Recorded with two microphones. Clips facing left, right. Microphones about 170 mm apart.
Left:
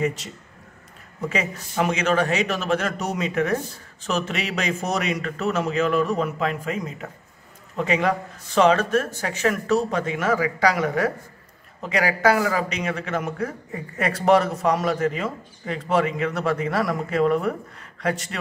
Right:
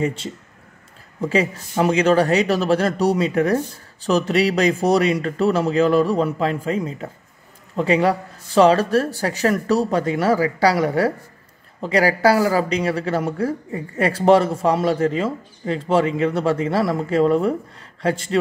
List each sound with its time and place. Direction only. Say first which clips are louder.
0.0 s speech: right 2 dB; 30° right (ahead or behind)
1.3 s speech: right 7 dB; 35° right (ahead or behind)